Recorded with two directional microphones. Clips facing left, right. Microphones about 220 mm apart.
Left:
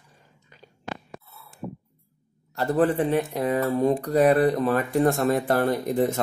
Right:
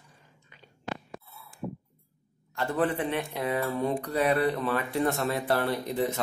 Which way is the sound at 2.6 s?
35° left (ahead or behind).